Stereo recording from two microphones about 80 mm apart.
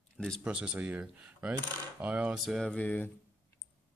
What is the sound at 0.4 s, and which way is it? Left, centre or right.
Speech, centre.